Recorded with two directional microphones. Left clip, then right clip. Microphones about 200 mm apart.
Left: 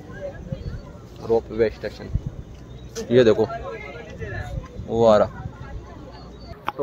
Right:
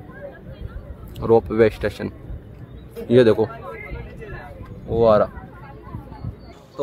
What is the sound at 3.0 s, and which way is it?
Speech, 10° right (ahead or behind).